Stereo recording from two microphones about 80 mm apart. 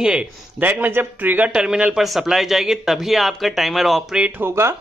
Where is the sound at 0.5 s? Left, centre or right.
Right.